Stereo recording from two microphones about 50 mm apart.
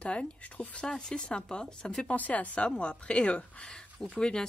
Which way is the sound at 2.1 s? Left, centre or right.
Left.